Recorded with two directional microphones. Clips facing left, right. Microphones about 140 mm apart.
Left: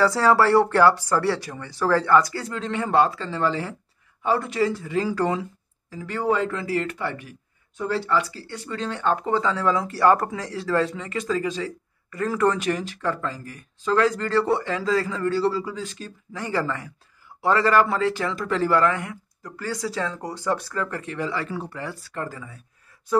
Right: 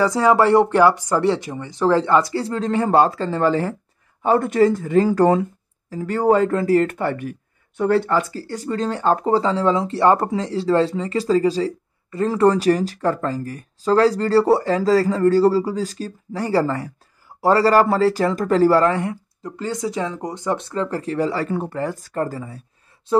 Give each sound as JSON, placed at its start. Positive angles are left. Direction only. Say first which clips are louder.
{"t": 0.0, "sound": "speech", "louder": "right 3 dB", "side_deg": -15}